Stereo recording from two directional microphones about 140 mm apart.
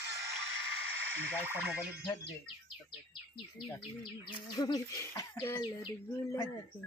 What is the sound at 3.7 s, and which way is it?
Bird, 35° left (ahead or behind).